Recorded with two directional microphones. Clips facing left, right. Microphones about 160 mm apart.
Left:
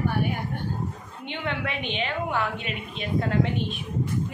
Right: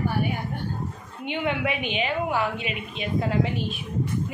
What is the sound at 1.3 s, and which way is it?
A woman's voice, 10° right (ahead or behind).